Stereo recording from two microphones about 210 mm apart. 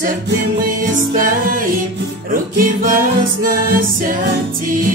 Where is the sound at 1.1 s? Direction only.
40° right (ahead or behind).